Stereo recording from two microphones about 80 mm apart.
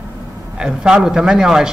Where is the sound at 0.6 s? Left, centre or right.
Centre.